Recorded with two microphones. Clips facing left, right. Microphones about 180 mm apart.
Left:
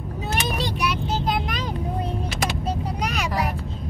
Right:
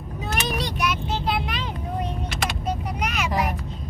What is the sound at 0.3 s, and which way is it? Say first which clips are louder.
Vehicle: left 1 dB; 30° left (ahead or behind).